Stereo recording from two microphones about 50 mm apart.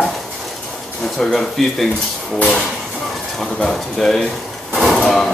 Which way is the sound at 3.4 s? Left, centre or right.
Centre.